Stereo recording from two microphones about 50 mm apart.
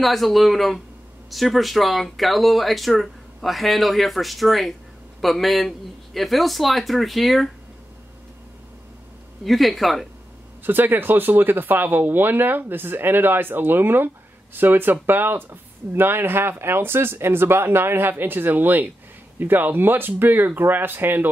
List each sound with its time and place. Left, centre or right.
0.0 s speech: centre
9.4 s speech: centre
10.6 s speech: right